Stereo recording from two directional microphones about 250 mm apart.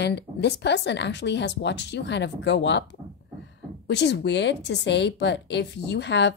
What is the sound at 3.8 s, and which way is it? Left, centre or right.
A woman's voice, left.